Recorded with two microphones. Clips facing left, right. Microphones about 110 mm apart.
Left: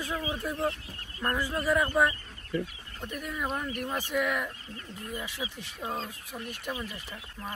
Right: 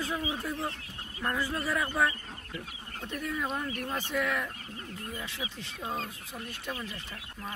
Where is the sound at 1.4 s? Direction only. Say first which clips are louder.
Left 6 dB; 15° left (ahead or behind).